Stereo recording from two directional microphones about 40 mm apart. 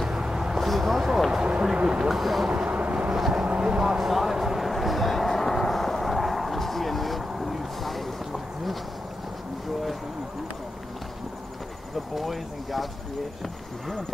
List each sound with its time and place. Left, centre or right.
0.0 s vehicle: centre
0.6 s vehicle: centre
1.3 s a sound: right
2.0 s speech: centre
2.5 s vehicle: right
3.2 s vehicle: centre
3.4 s vehicle: right
4.0 s a sound: centre
12.2 s speech: centre